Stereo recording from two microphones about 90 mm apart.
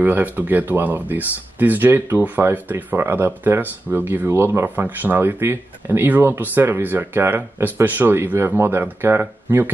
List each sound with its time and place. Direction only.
0.0 s speech: 20° right (ahead or behind)
4.6 s speech: 20° right (ahead or behind)